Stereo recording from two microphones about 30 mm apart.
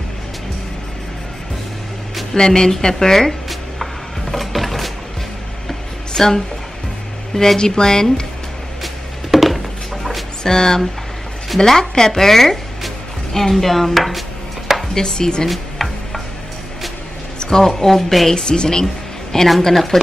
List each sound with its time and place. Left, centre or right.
2.3 s a woman's voice: left
3.4 s music: centre
6.1 s a woman's voice: centre
8.8 s music: centre
10.4 s speech: centre
15.0 s a woman's voice: left
15.4 s a sound: centre
17.4 s speech: centre
18.3 s a woman's voice: left